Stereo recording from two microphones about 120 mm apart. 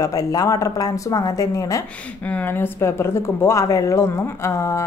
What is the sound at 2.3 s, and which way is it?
A woman's voice, 15° left (ahead or behind).